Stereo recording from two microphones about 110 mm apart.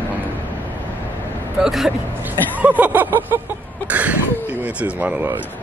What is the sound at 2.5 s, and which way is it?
Gasp, 15° right (ahead or behind).